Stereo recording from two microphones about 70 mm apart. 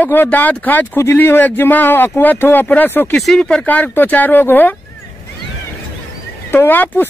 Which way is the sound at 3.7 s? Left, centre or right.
Left.